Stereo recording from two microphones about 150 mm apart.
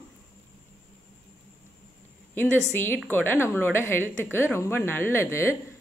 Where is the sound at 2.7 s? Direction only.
15° left (ahead or behind).